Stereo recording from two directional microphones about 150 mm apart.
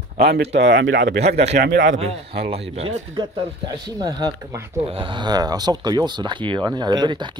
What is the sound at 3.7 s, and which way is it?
Speech, 30° right (ahead or behind).